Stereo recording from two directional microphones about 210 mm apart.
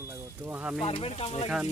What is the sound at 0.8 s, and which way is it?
Speech, 30° left (ahead or behind).